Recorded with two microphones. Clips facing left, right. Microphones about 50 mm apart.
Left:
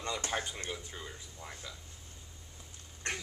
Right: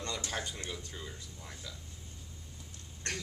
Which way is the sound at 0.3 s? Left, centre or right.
Centre.